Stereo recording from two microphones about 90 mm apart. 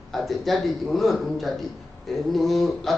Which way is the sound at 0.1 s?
Centre (ahead or behind).